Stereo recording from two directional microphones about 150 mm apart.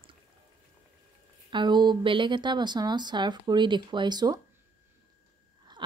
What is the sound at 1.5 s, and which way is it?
A woman's voice, 30° right (ahead or behind).